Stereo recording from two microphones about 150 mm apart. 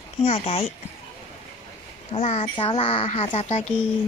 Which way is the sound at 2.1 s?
45° left (ahead or behind).